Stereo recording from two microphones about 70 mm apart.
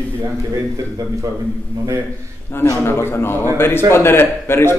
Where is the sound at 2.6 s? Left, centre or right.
Left.